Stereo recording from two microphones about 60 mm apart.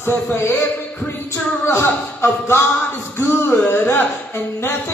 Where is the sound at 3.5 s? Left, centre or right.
Left.